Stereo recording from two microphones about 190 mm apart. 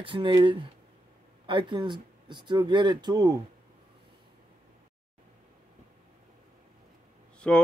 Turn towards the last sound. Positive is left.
turn(degrees=5)  # may be behind; listen again after turning